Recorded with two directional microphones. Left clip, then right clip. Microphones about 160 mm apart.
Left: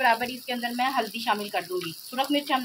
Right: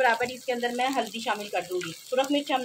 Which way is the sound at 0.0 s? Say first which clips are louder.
Even; 55° right (ahead or behind).